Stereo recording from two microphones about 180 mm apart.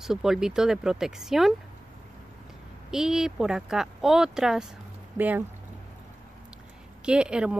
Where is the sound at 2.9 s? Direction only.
5° right (ahead or behind).